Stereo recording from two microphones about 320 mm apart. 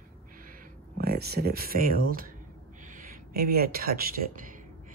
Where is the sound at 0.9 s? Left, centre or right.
Right.